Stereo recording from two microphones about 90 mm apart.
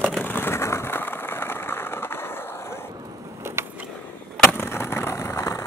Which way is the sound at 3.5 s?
30° right (ahead or behind).